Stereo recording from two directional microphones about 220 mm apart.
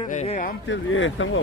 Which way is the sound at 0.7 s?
60° left (ahead or behind).